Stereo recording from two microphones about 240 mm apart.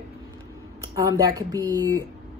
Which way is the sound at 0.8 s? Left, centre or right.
Centre.